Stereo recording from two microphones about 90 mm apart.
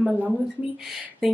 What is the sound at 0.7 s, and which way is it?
Speech, 5° right (ahead or behind).